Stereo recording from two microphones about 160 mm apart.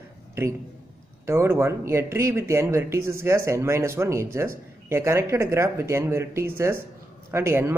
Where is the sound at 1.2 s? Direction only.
15° right (ahead or behind).